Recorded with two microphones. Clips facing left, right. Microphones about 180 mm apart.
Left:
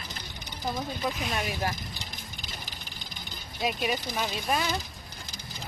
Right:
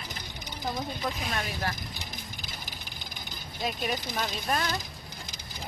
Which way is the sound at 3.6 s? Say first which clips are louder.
Left 2 dB; 10° left (ahead or behind).